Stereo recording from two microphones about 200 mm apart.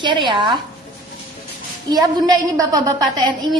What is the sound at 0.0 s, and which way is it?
Speech, 25° right (ahead or behind).